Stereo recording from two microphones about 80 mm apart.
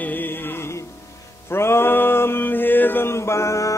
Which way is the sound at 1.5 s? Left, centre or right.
Left.